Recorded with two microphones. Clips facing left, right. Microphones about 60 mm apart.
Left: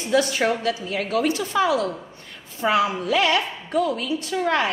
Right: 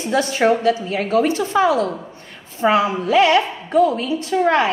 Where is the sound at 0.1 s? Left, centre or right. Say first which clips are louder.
Right 4 dB; right.